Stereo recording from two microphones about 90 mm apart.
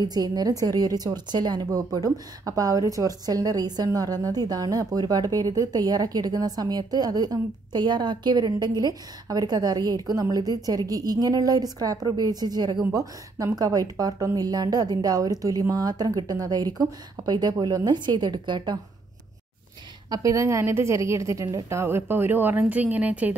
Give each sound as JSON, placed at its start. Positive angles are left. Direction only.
{"t": 0.0, "sound": "a woman's voice", "side_deg": -50}
{"t": 20.1, "sound": "a woman's voice", "side_deg": -40}
{"t": 21.7, "sound": "a woman's voice", "side_deg": -25}